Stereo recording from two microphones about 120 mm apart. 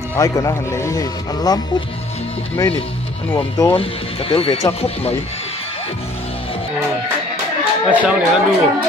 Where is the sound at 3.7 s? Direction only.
50° left (ahead or behind).